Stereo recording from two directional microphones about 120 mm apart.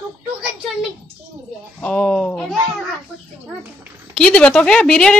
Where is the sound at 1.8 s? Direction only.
10° left (ahead or behind).